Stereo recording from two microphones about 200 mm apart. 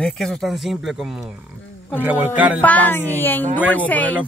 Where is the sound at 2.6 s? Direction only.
10° left (ahead or behind).